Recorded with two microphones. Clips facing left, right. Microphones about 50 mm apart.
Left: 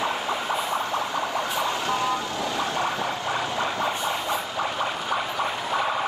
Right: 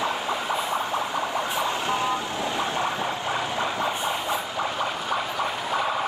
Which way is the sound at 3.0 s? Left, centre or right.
Centre.